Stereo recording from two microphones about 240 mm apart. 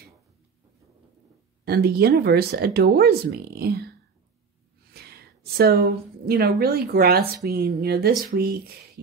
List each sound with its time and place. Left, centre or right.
1.6 s speech: right
4.9 s a woman's voice: right